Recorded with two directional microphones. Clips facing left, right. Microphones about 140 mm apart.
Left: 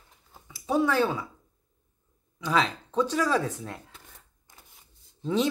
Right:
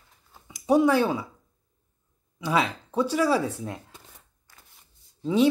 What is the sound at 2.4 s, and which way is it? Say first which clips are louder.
Speech: right 1 dB; 10° right (ahead or behind).